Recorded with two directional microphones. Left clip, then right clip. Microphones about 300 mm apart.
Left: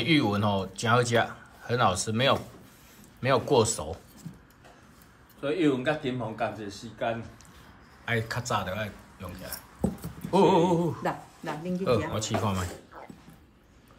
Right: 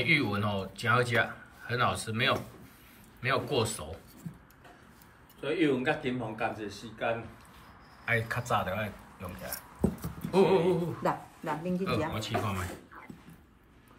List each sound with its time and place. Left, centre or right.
0.0 s speech: centre
5.4 s speech: left
8.0 s speech: centre